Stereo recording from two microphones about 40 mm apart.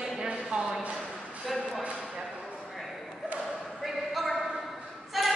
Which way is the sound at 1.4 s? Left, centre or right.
Centre.